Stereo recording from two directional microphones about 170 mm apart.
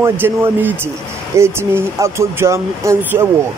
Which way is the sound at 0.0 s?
15° right (ahead or behind).